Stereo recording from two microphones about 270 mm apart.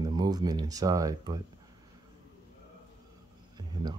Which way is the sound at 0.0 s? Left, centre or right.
Centre.